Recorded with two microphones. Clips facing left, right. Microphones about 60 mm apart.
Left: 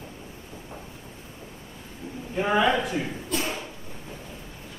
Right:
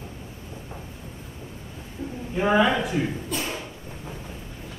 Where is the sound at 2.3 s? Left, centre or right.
Centre.